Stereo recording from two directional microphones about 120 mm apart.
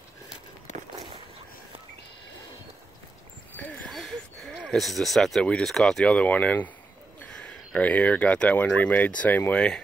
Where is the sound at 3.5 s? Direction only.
10° left (ahead or behind).